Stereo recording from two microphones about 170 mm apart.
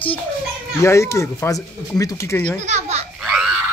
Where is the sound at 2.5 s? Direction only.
40° right (ahead or behind).